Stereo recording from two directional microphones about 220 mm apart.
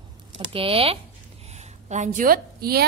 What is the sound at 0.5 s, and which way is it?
A woman's voice, 25° right (ahead or behind).